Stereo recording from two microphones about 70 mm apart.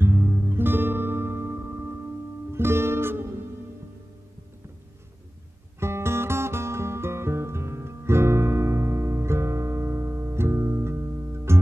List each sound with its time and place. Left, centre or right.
0.0 s music: right
5.8 s music: right